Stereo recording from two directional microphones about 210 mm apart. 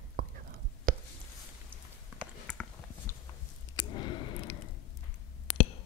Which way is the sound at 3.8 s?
20° left (ahead or behind).